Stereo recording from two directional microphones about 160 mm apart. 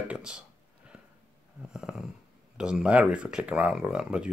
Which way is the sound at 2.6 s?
5° right (ahead or behind).